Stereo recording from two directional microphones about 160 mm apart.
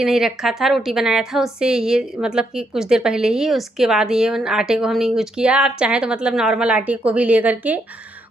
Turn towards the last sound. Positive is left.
turn(degrees=-10)  # may be behind; listen again after turning